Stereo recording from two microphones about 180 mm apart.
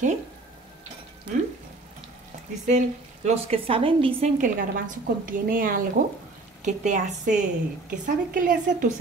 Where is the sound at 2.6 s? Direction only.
40° right (ahead or behind).